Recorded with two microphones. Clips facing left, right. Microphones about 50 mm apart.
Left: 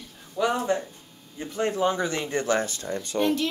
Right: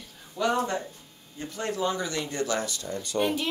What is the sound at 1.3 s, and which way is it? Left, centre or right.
Speech, left.